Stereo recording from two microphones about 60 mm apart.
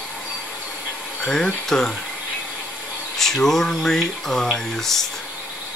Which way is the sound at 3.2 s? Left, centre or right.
Centre.